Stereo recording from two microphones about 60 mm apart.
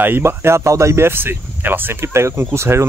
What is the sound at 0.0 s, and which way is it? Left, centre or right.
Speech, right.